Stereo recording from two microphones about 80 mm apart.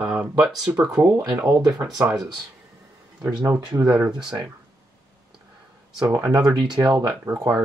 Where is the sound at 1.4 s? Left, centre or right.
Right.